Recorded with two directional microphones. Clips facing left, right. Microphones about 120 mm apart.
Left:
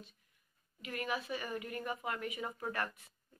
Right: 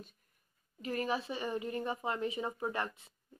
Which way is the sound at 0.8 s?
35° right (ahead or behind).